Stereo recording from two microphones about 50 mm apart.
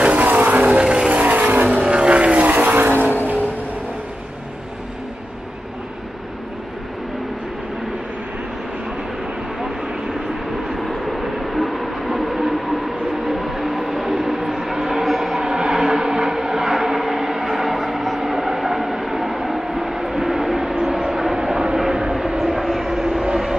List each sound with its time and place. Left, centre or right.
0.0 s vehicle: right
0.7 s vehicle: right
1.2 s vehicle: right
1.8 s vehicle: right
9.6 s vehicle: centre
10.7 s train: centre
21.7 s vehicle: centre